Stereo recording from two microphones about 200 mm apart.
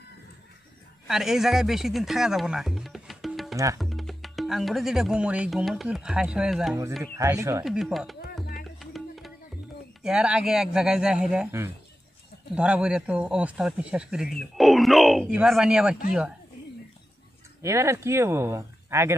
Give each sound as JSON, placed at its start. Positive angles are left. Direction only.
{"t": 1.0, "sound": "speech", "side_deg": 0}
{"t": 3.5, "sound": "speech", "side_deg": -15}
{"t": 3.8, "sound": "speech", "side_deg": 0}
{"t": 7.0, "sound": "speech", "side_deg": -15}
{"t": 7.6, "sound": "speech", "side_deg": 0}
{"t": 8.7, "sound": "music", "side_deg": 0}
{"t": 10.0, "sound": "speech", "side_deg": -5}
{"t": 17.6, "sound": "speech", "side_deg": -15}